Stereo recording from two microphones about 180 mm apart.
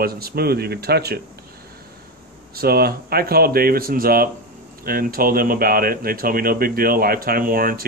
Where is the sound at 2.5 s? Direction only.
60° right (ahead or behind).